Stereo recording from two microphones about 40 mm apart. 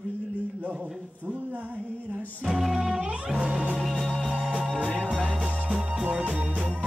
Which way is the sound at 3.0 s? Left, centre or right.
Right.